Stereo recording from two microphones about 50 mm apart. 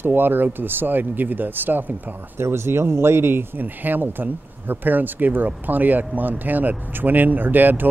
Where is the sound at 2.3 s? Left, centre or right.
Right.